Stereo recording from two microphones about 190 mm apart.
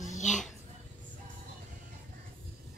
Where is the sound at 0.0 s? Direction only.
40° left (ahead or behind).